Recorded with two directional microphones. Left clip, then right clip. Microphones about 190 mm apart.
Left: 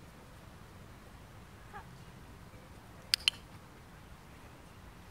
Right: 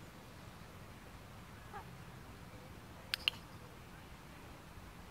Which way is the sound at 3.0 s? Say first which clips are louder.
Left 6 dB; 15° left (ahead or behind).